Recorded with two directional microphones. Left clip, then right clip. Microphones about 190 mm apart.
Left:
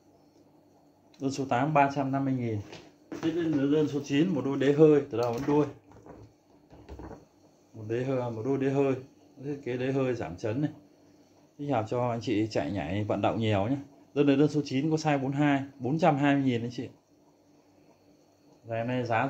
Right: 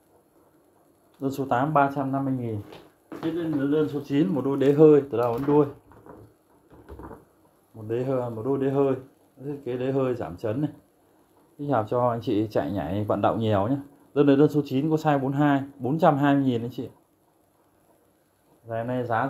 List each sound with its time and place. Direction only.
1.2 s speech: 10° right (ahead or behind)
4.0 s speech: 15° right (ahead or behind)
7.9 s speech: 15° right (ahead or behind)
18.7 s speech: 10° right (ahead or behind)